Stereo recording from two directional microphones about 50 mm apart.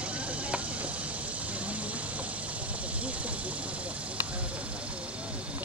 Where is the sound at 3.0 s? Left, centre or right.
Right.